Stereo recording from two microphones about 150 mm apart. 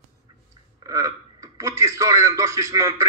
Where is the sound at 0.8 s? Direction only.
20° right (ahead or behind).